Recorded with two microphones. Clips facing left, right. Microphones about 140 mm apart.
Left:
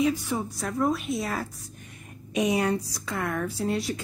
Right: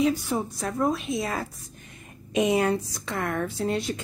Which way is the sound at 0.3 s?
25° right (ahead or behind).